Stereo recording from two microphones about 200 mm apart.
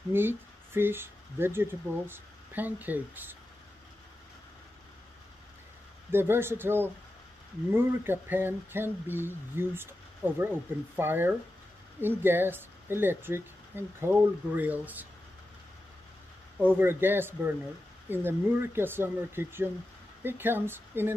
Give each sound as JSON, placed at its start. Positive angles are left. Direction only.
{"t": 0.1, "sound": "speech", "side_deg": -10}
{"t": 6.1, "sound": "speech", "side_deg": -10}
{"t": 16.5, "sound": "speech", "side_deg": -10}